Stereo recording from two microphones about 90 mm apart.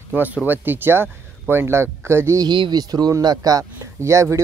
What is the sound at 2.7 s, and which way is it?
Speech, 45° right (ahead or behind).